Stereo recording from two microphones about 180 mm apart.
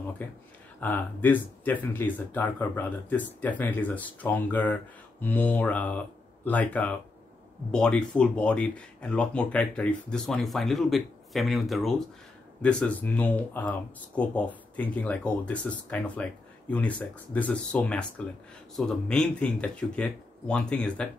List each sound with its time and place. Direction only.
0.2 s speech: 10° left (ahead or behind)